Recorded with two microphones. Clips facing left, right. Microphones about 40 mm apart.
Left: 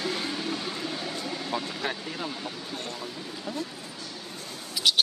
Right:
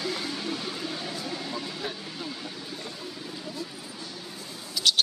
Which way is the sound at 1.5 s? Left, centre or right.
Left.